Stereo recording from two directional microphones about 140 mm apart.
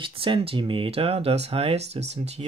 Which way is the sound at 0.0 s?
40° right (ahead or behind).